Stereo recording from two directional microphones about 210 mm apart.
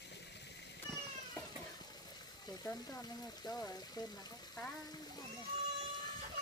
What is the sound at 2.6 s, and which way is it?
Speech, 15° left (ahead or behind).